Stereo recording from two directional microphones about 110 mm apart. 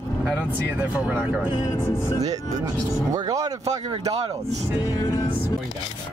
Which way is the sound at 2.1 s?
35° right (ahead or behind).